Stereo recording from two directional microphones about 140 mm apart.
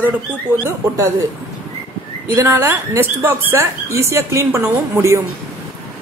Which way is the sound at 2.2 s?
20° right (ahead or behind).